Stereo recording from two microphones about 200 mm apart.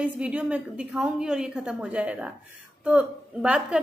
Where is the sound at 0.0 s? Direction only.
5° right (ahead or behind).